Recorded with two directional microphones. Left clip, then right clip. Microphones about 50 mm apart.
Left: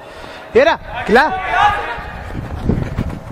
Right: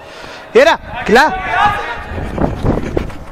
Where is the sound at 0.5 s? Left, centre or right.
Right.